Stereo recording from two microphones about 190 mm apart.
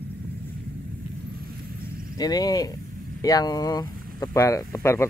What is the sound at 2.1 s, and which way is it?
Speech, 20° left (ahead or behind).